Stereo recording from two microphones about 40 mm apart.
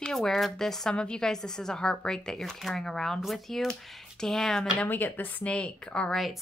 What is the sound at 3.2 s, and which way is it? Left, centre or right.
A woman's voice, centre.